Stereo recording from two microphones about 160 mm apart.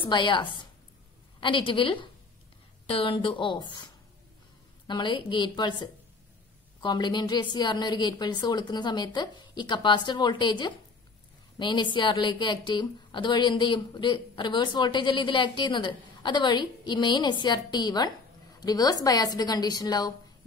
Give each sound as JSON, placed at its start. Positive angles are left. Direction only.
{"t": 0.0, "sound": "a woman's voice", "side_deg": 30}